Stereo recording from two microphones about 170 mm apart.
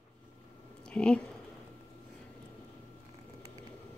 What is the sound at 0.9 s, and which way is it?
Speech, 5° left (ahead or behind).